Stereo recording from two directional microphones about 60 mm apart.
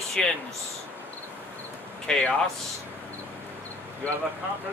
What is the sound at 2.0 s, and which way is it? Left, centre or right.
Speech, centre.